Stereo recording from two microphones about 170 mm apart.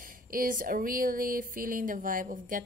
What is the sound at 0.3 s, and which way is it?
Speech, 55° right (ahead or behind).